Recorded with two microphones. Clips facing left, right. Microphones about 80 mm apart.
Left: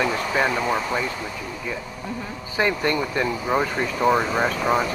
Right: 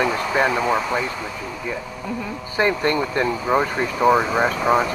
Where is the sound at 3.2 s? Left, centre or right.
Centre.